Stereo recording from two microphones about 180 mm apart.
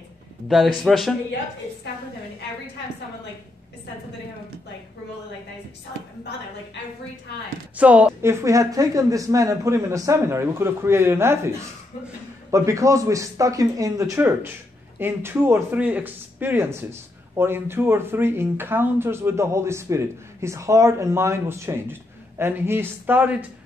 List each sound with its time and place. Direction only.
0.5 s speech: centre (ahead or behind)
7.7 s speech: 5° right (ahead or behind)